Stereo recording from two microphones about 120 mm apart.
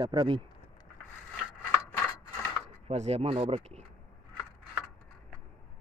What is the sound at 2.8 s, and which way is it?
Speech, 60° right (ahead or behind).